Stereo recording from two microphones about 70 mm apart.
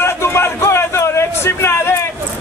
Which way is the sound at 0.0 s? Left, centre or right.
Left.